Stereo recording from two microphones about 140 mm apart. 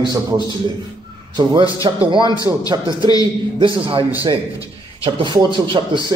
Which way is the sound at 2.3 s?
25° left (ahead or behind).